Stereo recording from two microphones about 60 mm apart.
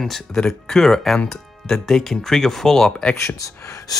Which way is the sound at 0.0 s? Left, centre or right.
Centre.